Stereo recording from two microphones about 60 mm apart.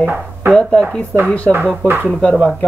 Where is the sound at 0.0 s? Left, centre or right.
Right.